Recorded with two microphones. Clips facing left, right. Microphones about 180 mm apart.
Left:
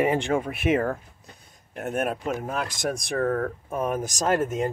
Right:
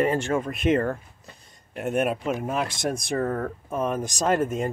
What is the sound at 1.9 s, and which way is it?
Speech, 10° right (ahead or behind).